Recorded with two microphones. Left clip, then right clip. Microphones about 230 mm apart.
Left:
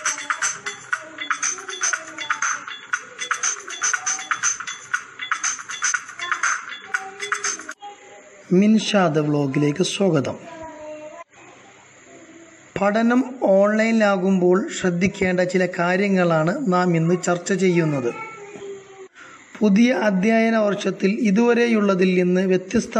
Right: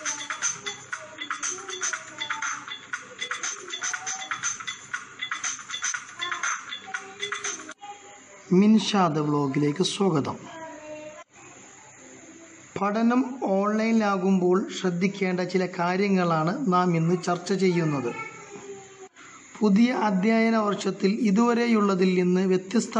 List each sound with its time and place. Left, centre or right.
0.0 s a sound: left
8.5 s speech: centre
12.7 s speech: centre
19.6 s speech: centre